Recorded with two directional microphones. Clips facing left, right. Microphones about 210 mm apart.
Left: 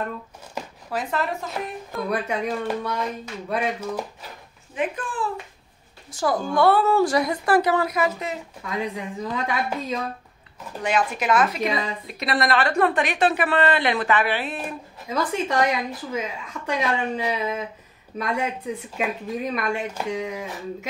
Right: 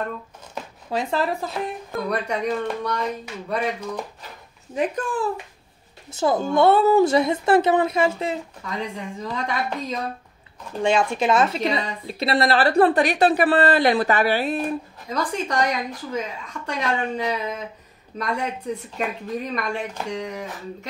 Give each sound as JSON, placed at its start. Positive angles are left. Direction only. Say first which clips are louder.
{"t": 0.8, "sound": "speech", "louder": "right 3 dB", "side_deg": -30}
{"t": 2.0, "sound": "a woman's voice", "louder": "right 1 dB", "side_deg": 5}
{"t": 4.7, "sound": "a woman's voice", "louder": "right 3 dB", "side_deg": -40}
{"t": 6.0, "sound": "speech", "louder": "right 3 dB", "side_deg": -25}
{"t": 8.6, "sound": "a woman's voice", "louder": "left 3 dB", "side_deg": 5}
{"t": 10.8, "sound": "a woman's voice", "louder": "right 4 dB", "side_deg": -25}
{"t": 15.0, "sound": "a woman's voice", "louder": "left 2 dB", "side_deg": 5}